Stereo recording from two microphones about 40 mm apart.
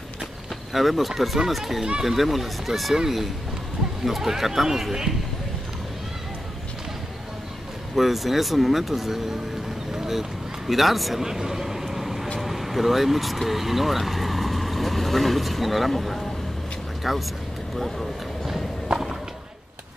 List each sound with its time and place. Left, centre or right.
0.7 s speech: centre
4.0 s speech: centre
7.9 s speech: centre
9.9 s a sound: centre
10.7 s speech: centre
11.2 s vehicle: centre
12.4 s speech: centre
18.9 s skateboard: centre